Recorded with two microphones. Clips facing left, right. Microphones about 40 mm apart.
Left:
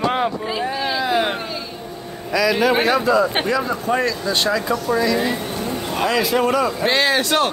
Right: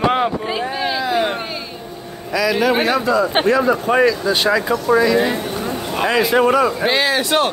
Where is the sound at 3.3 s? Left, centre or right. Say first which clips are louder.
Right 5 dB; right.